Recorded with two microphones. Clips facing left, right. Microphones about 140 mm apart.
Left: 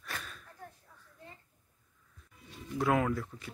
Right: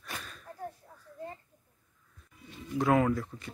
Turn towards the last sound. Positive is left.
turn(degrees=0)  # may be behind; listen again after turning